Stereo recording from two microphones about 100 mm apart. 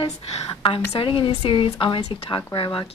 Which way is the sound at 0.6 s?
65° left (ahead or behind).